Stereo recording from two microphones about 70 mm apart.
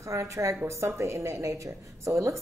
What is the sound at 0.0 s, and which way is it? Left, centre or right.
A woman's voice, right.